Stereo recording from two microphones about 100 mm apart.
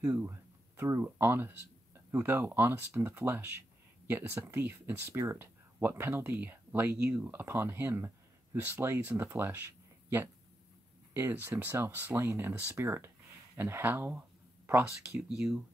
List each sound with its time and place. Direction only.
0.0 s speech: 10° right (ahead or behind)
0.3 s speech: 25° right (ahead or behind)
15.2 s speech: 10° right (ahead or behind)